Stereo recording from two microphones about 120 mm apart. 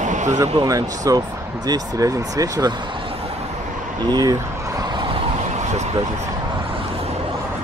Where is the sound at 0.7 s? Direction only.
30° right (ahead or behind).